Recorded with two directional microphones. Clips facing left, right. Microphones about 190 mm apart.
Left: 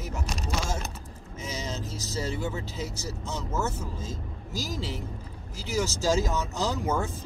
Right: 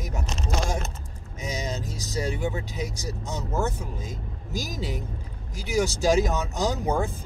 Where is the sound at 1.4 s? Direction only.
15° right (ahead or behind).